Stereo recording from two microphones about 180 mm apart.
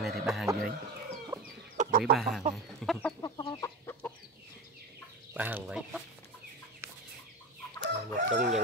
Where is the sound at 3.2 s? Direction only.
25° left (ahead or behind).